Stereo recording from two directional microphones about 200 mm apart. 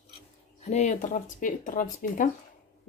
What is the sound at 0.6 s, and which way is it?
Speech, 35° left (ahead or behind).